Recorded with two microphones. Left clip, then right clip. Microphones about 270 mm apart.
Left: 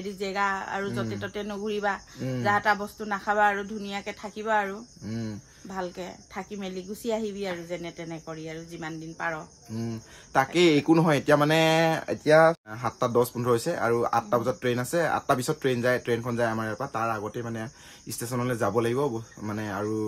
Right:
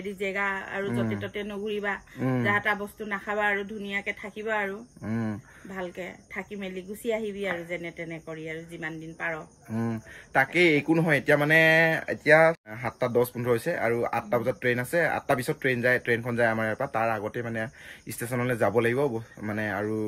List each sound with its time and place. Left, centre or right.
0.2 s speech: centre
5.8 s speech: centre